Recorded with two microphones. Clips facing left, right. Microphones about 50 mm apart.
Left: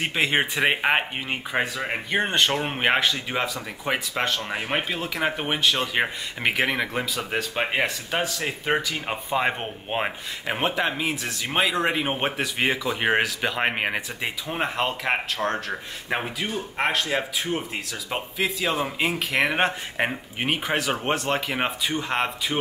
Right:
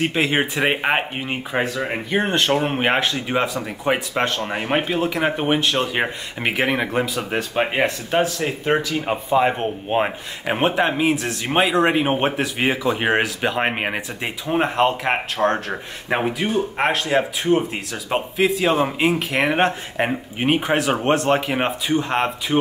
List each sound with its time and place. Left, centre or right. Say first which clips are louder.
0.0 s speech: right 3 dB; centre
10.4 s speech: right 6 dB; centre